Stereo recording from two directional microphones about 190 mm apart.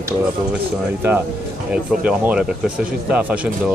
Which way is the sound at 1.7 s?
5° right (ahead or behind).